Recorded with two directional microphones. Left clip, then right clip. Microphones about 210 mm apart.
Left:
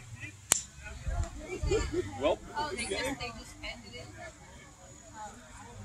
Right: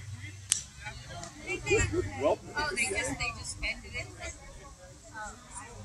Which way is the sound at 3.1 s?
55° left (ahead or behind).